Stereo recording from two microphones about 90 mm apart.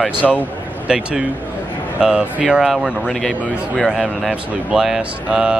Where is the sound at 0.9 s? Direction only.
10° right (ahead or behind).